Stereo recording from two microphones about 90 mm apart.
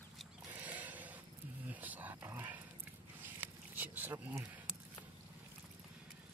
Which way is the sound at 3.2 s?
20° right (ahead or behind).